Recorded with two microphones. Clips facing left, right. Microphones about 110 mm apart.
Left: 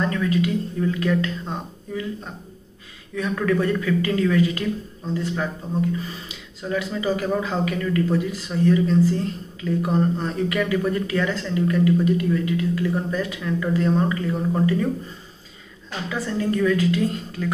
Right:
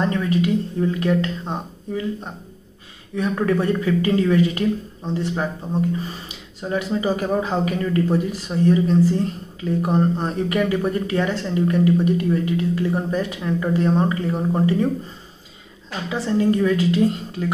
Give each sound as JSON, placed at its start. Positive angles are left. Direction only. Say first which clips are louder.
{"t": 0.0, "sound": "speech", "louder": "right 2 dB", "side_deg": -30}
{"t": 3.2, "sound": "speech", "louder": "right 1 dB", "side_deg": -30}
{"t": 16.1, "sound": "speech", "louder": "right 5 dB", "side_deg": -25}